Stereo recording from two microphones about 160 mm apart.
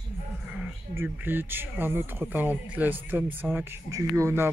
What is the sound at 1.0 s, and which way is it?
Speech, 15° right (ahead or behind).